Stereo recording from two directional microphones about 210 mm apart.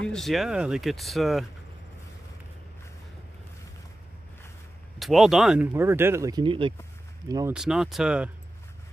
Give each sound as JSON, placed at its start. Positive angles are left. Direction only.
{"t": 0.0, "sound": "speech", "side_deg": 0}
{"t": 4.9, "sound": "speech", "side_deg": 0}
{"t": 7.5, "sound": "speech", "side_deg": 0}